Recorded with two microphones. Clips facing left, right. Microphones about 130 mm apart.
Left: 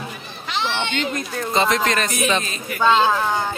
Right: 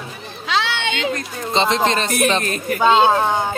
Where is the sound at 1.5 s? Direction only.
25° right (ahead or behind).